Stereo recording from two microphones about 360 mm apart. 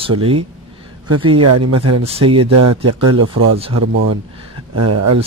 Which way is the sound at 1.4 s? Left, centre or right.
Right.